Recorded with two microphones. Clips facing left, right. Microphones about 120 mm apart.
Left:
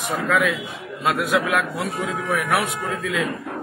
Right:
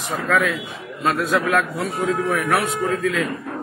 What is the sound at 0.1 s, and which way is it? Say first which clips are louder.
A man's voice: right 1 dB; 15° left (ahead or behind).